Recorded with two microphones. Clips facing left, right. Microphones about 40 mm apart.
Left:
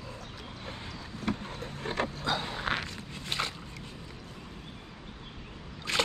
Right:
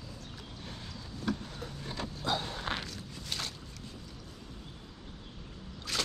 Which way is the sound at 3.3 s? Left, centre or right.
Left.